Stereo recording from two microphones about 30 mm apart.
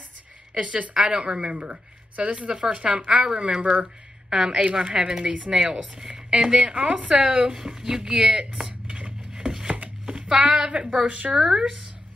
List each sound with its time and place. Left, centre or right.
0.6 s a woman's voice: right
0.9 s speech: right
1.2 s speech: right
3.6 s speech: right
4.3 s a woman's voice: right
6.3 s a woman's voice: right
7.5 s speech: right
8.8 s a sound: right
9.4 s chopping: right
10.0 s a sound: right
11.0 s speech: right
11.3 s speech: centre